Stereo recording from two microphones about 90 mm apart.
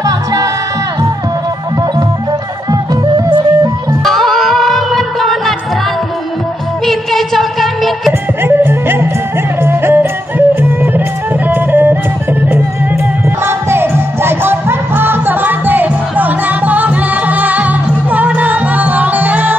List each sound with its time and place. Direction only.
0.0 s music: 40° right (ahead or behind)
2.7 s music: 50° right (ahead or behind)
4.0 s music: centre (ahead or behind)
6.9 s a sound: centre (ahead or behind)
8.5 s music: 25° right (ahead or behind)
13.5 s music: 25° right (ahead or behind)